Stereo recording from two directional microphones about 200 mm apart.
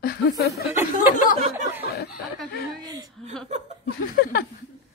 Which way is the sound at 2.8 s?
20° right (ahead or behind).